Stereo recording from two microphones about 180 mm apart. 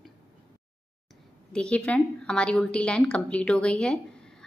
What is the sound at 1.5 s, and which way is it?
A woman's voice, 5° left (ahead or behind).